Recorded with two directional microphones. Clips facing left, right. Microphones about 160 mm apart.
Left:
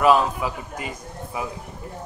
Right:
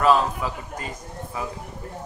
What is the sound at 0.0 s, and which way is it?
A man's voice, 10° left (ahead or behind).